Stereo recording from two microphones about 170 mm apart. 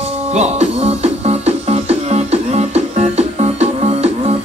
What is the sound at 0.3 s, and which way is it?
Music, 40° right (ahead or behind).